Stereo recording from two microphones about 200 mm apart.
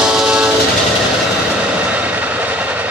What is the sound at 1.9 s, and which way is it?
Train, 5° right (ahead or behind).